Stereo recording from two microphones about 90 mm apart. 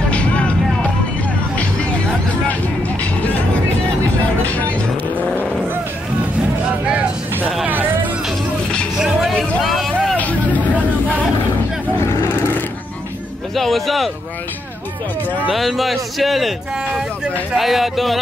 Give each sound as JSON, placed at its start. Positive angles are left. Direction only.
{"t": 0.1, "sound": "music", "side_deg": 15}
{"t": 1.6, "sound": "music", "side_deg": 15}
{"t": 4.4, "sound": "vehicle", "side_deg": 15}
{"t": 6.9, "sound": "a sound", "side_deg": -15}
{"t": 7.6, "sound": "music", "side_deg": -20}
{"t": 9.0, "sound": "music", "side_deg": 0}
{"t": 9.6, "sound": "a sound", "side_deg": 0}
{"t": 10.1, "sound": "hubbub", "side_deg": 15}
{"t": 12.1, "sound": "vehicle", "side_deg": 30}
{"t": 13.6, "sound": "a sound", "side_deg": 0}
{"t": 15.5, "sound": "a man's voice", "side_deg": 0}